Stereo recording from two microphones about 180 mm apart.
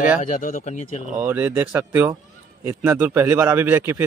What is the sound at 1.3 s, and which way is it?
Speech, 10° right (ahead or behind).